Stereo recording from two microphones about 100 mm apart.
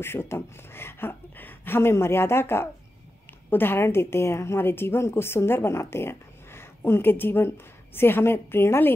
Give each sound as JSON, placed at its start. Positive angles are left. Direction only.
{"t": 0.0, "sound": "a woman's voice", "side_deg": 25}